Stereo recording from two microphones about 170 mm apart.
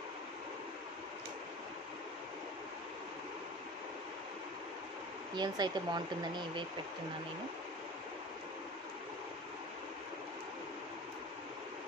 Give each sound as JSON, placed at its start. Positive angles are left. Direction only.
{"t": 5.3, "sound": "speech", "side_deg": -25}